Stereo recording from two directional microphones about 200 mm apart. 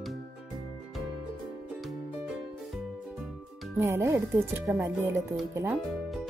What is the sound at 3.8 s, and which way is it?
Speech, 10° right (ahead or behind).